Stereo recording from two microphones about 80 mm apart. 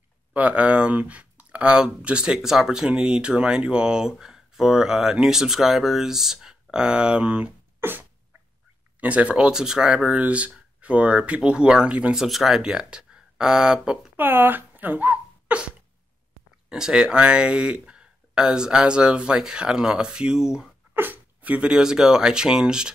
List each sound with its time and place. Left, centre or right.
0.3 s speech: centre
7.8 s sneeze: right
9.0 s speech: centre
14.1 s a sound: right
16.6 s speech: centre
20.9 s speech: right